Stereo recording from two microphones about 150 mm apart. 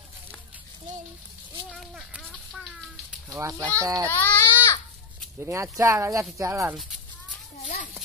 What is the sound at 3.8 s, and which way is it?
Speech, 25° right (ahead or behind).